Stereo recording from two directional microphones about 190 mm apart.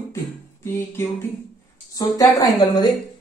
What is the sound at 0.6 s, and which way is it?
Speech, 15° left (ahead or behind).